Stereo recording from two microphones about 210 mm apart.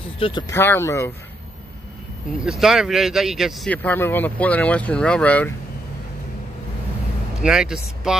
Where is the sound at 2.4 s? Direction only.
Centre (ahead or behind).